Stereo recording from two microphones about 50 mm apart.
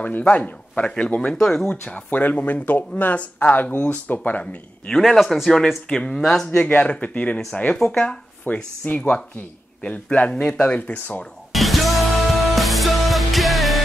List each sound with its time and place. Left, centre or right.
0.0 s speech: left
1.4 s speech: centre
1.7 s speech: left
2.0 s speech: left
5.0 s speech: centre
5.9 s speech: centre
6.6 s speech: left
8.5 s speech: left; by 10.8 s centre
10.9 s speech: left
11.5 s music: centre